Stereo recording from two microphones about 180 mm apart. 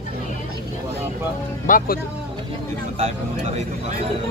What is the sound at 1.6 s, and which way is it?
Speech, 50° left (ahead or behind).